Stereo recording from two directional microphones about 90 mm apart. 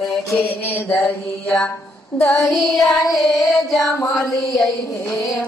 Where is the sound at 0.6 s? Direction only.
15° left (ahead or behind).